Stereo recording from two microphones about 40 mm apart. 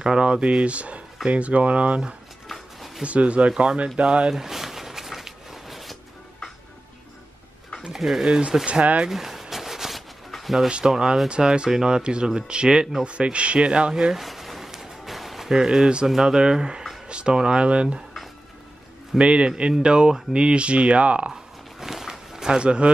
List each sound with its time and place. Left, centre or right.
0.0 s speech: right
2.4 s music: centre
3.0 s speech: right
4.3 s a sound: centre
7.9 s speech: centre
8.3 s speech: right
9.0 s a sound: centre
10.9 s speech: centre
13.9 s speech: centre
14.2 s a sound: centre
15.5 s speech: centre; by 18.0 s right
19.1 s speech: right
21.3 s a sound: centre
22.6 s speech: right